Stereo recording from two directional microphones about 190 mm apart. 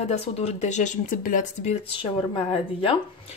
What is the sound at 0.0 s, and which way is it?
Speech, 35° left (ahead or behind).